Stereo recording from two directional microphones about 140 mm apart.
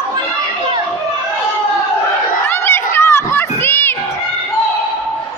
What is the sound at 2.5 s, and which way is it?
Chatter, 15° left (ahead or behind).